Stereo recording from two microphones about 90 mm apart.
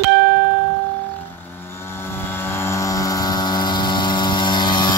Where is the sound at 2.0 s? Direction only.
25° left (ahead or behind); by 4.9 s 55° left (ahead or behind).